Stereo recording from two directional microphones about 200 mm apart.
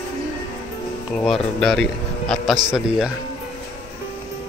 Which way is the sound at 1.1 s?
Centre (ahead or behind).